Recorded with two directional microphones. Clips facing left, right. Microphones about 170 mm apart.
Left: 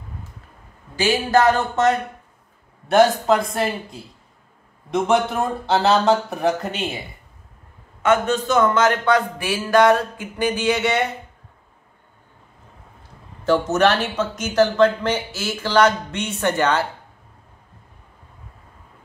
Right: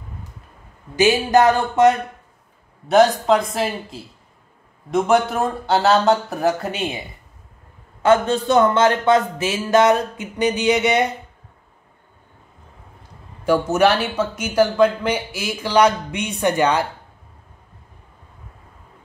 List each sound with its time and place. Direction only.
0.9 s speech: 20° right (ahead or behind)
2.9 s speech: centre (ahead or behind)
8.0 s speech: 30° right (ahead or behind)
13.4 s speech: 10° right (ahead or behind)